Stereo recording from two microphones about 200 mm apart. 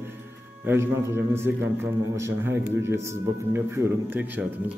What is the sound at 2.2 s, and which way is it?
Speech, 15° right (ahead or behind).